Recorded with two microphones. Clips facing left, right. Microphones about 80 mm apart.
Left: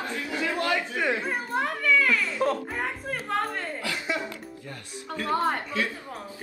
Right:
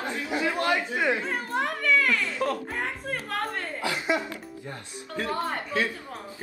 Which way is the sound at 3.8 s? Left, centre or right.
Right.